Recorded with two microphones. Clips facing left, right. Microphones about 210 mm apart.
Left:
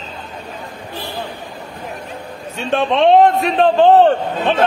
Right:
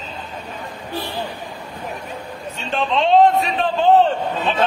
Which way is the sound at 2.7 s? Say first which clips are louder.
Left 5 dB; 60° left (ahead or behind).